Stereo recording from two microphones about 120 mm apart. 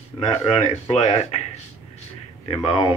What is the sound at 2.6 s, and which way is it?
Speech, 45° left (ahead or behind).